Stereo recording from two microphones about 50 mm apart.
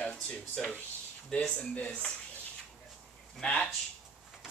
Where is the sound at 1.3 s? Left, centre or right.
Left.